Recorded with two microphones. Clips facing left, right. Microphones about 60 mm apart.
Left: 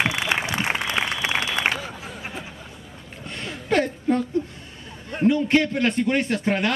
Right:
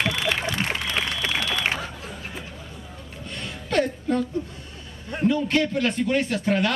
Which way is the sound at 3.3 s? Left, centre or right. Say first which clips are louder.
Left 5 dB; centre.